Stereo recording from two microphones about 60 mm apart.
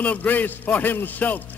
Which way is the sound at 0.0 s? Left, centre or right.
Left.